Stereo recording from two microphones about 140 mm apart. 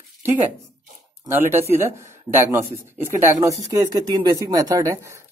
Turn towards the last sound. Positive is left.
turn(degrees=-25)  # may be behind; listen again after turning